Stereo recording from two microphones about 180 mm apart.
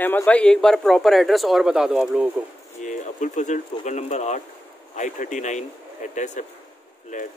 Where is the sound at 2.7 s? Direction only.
45° left (ahead or behind).